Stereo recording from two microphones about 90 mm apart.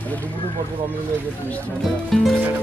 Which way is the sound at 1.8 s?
Centre (ahead or behind).